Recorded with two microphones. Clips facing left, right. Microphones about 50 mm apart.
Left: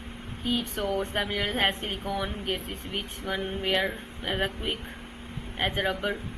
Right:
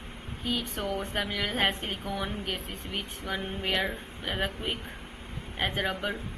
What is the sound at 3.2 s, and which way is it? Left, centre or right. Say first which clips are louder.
Speech: left 3 dB; centre.